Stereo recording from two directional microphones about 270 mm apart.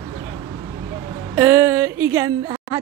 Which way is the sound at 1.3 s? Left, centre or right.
Centre.